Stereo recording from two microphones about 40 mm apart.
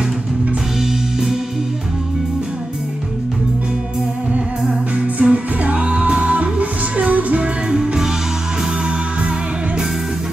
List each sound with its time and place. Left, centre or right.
5.0 s music: right
7.7 s music: centre